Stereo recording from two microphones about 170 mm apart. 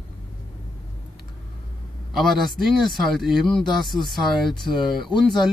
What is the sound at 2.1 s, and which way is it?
Speech, centre (ahead or behind).